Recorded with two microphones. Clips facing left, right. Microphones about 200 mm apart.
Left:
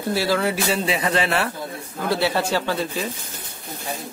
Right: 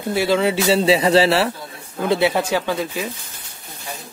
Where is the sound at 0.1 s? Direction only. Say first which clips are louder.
Right 4 dB; 20° right (ahead or behind).